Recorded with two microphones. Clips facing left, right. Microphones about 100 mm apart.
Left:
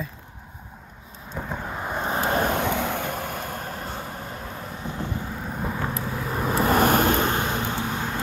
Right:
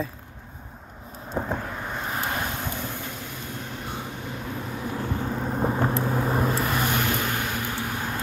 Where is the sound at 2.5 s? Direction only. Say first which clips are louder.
Left 8 dB; 80° left; by 3.6 s 55° left (ahead or behind).